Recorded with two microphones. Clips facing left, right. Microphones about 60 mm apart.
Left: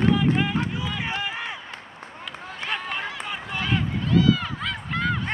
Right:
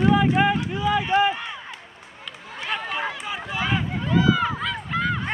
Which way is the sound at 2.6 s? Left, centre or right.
Centre.